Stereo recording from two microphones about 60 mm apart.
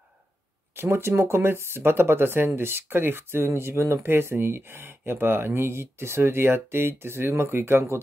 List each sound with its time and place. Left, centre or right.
0.7 s speech: right